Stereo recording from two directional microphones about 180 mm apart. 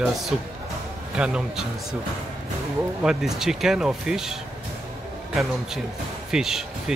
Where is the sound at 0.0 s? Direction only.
Centre (ahead or behind).